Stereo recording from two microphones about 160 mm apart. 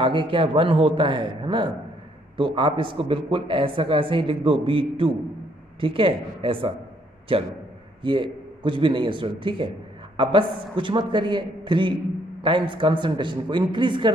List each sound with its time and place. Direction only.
0.0 s a man's voice: 30° right (ahead or behind)